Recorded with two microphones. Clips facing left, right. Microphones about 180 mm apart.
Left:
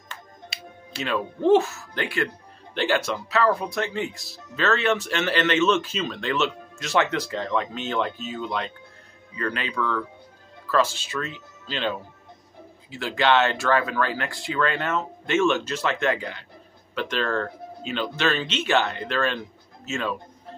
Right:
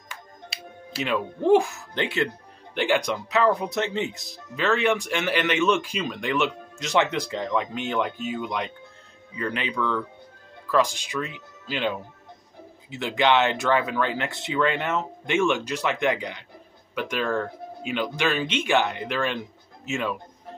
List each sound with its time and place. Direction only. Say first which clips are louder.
0.5 s music: even; centre (ahead or behind)
1.0 s speech: left 1 dB; 15° right (ahead or behind)